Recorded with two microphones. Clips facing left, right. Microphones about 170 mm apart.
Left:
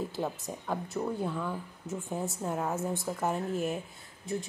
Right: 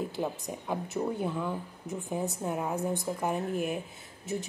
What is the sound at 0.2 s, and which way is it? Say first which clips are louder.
Speech: right 1 dB; 10° right (ahead or behind).